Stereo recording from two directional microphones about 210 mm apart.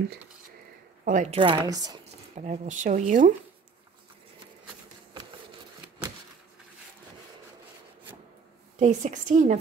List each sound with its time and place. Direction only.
1.0 s a woman's voice: 35° right (ahead or behind)
1.4 s speech: 20° right (ahead or behind)
2.3 s speech: 35° right (ahead or behind)
8.7 s speech: 35° right (ahead or behind)